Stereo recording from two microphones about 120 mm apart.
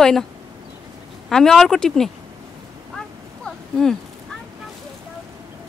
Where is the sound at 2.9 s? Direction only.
5° left (ahead or behind).